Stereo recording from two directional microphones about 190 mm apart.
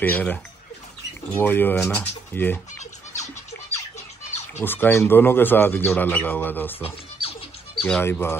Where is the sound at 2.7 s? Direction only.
35° left (ahead or behind).